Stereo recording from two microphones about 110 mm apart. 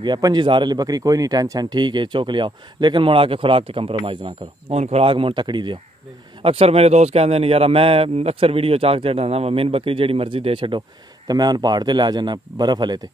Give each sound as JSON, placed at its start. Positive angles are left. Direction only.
{"t": 0.0, "sound": "speech", "side_deg": -40}
{"t": 4.7, "sound": "speech", "side_deg": -75}
{"t": 6.4, "sound": "speech", "side_deg": -60}
{"t": 11.2, "sound": "speech", "side_deg": -40}